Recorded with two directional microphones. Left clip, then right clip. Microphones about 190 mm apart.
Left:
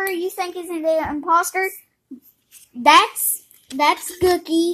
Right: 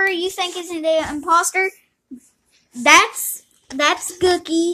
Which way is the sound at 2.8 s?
10° left (ahead or behind).